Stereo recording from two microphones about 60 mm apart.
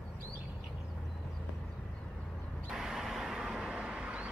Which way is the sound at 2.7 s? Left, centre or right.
Centre.